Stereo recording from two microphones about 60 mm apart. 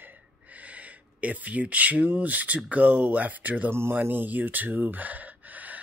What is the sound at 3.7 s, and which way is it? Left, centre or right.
Speech, right.